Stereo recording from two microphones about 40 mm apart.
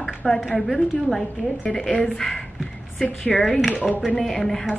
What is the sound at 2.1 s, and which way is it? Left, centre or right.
Speech, centre.